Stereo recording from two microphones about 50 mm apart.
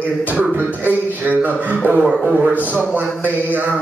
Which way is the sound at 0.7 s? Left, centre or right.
Right.